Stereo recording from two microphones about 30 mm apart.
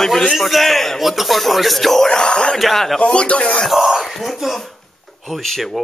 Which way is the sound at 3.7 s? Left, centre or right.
Centre.